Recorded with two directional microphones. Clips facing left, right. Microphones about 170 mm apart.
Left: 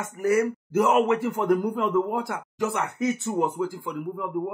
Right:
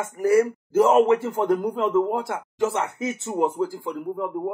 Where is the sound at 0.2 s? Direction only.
30° right (ahead or behind).